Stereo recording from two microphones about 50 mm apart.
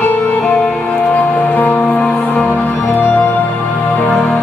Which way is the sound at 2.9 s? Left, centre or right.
Left.